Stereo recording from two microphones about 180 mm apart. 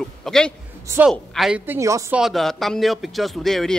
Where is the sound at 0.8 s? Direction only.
10° right (ahead or behind).